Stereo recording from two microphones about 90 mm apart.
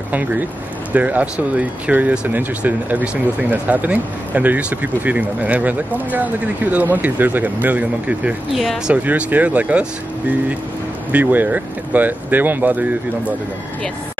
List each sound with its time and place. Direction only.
0.1 s speech: 20° right (ahead or behind)
8.5 s speech: 5° right (ahead or behind)
8.9 s speech: 20° right (ahead or behind)
11.1 s speech: 20° right (ahead or behind)